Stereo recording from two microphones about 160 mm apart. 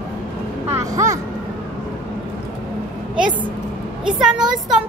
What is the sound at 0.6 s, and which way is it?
Speech, 20° right (ahead or behind).